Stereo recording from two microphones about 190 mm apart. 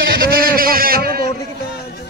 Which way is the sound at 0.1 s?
55° right (ahead or behind).